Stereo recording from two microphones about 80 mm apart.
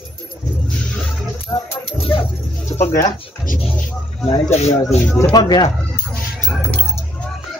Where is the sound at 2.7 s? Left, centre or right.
Left.